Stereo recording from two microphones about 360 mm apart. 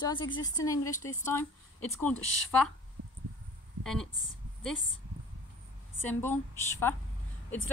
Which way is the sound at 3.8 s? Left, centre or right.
Centre.